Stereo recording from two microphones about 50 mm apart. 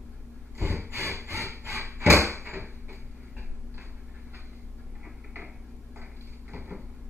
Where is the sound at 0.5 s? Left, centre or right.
Right.